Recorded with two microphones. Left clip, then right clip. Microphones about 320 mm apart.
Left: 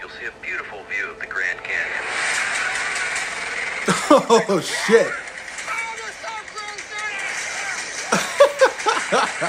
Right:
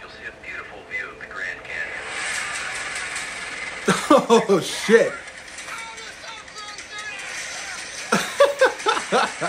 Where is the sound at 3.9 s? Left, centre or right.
Centre.